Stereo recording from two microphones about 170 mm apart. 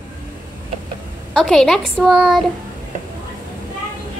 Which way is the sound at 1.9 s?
Centre (ahead or behind).